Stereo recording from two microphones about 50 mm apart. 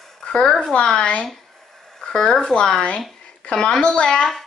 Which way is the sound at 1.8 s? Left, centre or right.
Centre.